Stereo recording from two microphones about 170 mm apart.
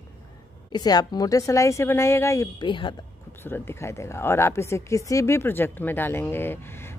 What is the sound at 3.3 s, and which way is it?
Speech, 10° left (ahead or behind).